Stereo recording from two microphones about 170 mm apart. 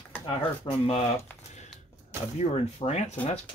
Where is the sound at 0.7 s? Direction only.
35° left (ahead or behind).